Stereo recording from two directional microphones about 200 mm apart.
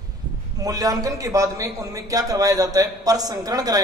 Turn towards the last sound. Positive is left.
turn(degrees=-20)  # may be behind; listen again after turning